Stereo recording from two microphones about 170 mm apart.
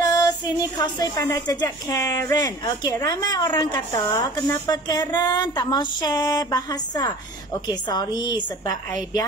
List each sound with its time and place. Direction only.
0.0 s music: 20° left (ahead or behind)
0.7 s speech: 20° left (ahead or behind)